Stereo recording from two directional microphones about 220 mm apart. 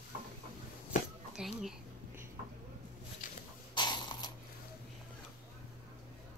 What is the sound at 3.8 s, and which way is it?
Mechanisms, 20° left (ahead or behind).